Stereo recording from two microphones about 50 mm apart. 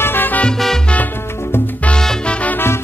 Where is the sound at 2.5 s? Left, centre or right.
Left.